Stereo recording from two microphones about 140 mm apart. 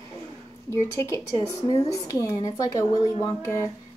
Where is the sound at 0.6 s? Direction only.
20° left (ahead or behind).